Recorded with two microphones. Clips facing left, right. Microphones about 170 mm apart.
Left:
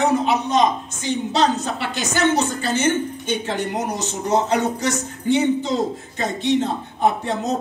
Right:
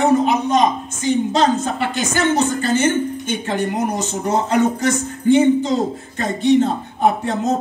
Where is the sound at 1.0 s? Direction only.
50° right (ahead or behind).